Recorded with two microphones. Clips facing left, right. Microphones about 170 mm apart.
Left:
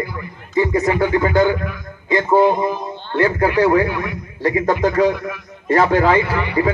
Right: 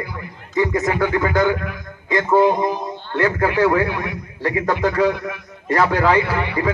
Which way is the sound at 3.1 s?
35° left (ahead or behind).